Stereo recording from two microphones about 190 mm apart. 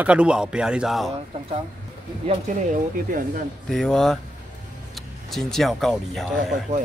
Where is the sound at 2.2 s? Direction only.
45° right (ahead or behind).